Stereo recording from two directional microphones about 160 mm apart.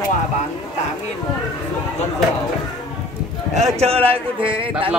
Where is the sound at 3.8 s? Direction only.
35° right (ahead or behind).